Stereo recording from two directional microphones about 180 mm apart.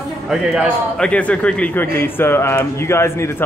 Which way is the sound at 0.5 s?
5° left (ahead or behind).